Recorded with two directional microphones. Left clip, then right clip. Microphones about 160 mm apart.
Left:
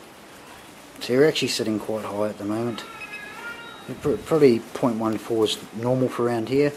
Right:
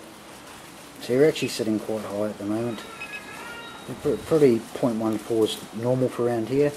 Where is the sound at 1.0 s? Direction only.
20° left (ahead or behind).